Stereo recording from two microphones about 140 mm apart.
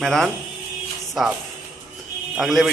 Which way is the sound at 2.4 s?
Centre (ahead or behind).